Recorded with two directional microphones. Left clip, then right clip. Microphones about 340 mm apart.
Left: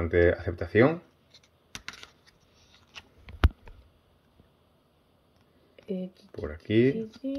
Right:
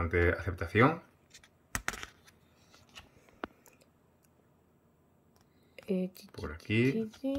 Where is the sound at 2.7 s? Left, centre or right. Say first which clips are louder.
Left 5 dB; centre.